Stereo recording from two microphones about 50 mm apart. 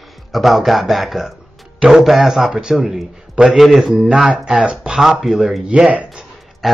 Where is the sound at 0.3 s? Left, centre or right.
Centre.